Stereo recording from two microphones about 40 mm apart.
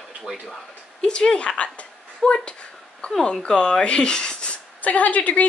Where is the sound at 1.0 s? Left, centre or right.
Left.